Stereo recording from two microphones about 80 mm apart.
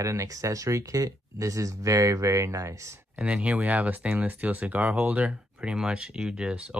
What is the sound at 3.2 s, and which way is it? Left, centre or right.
Speech, centre.